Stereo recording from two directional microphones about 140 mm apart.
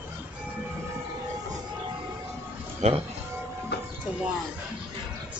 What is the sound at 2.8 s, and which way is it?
Music, 50° right (ahead or behind).